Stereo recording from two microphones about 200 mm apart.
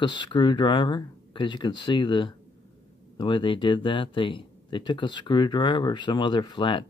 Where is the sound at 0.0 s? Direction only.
25° left (ahead or behind).